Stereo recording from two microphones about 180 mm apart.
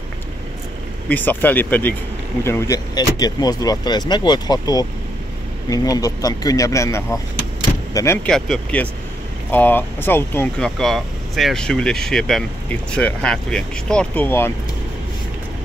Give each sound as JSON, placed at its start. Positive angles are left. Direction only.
{"t": 1.0, "sound": "speech", "side_deg": 10}
{"t": 8.3, "sound": "speech", "side_deg": 5}